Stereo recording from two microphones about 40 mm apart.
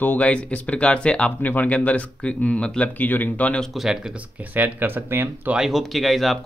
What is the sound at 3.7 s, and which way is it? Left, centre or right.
Speech, centre.